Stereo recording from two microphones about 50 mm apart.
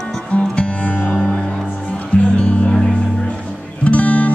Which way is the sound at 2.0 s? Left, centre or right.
Left.